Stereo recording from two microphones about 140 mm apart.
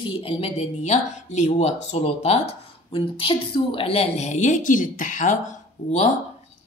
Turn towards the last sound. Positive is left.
turn(degrees=60)  # may be behind; listen again after turning